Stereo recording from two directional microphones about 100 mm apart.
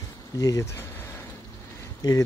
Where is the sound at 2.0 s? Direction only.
40° left (ahead or behind).